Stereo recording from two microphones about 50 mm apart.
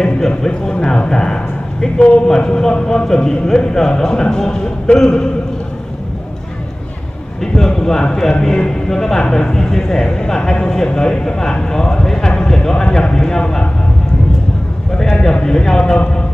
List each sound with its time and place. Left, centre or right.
0.4 s a man's voice: centre
7.5 s a man's voice: centre
15.4 s a man's voice: centre
15.8 s a man's voice: left